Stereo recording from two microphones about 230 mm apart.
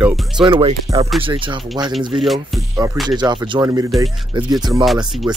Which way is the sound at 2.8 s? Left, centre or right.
Centre.